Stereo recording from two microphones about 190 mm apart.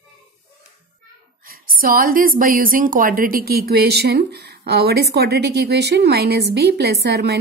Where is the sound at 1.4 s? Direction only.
50° right (ahead or behind).